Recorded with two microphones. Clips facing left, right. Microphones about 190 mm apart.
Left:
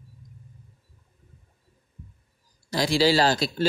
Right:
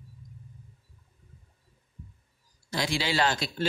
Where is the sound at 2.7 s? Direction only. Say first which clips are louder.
Left 8 dB; 35° left (ahead or behind).